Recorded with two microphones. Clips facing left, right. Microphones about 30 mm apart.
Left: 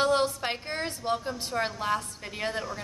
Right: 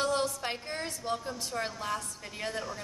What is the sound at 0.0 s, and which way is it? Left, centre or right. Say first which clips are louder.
A woman's voice: left 5 dB; left.